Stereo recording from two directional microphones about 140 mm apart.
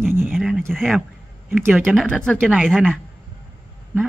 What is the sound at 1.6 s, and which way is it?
Speech, 10° right (ahead or behind).